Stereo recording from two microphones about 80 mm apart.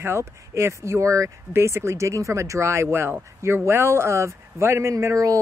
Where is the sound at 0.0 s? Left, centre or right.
Right.